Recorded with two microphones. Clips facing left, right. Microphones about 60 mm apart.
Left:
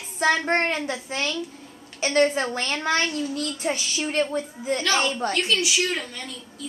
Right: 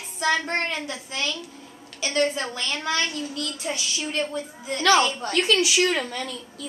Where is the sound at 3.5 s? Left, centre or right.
Left.